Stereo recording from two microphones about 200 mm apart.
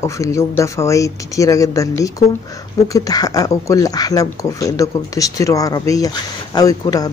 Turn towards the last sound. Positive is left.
turn(degrees=20)  # may be behind; listen again after turning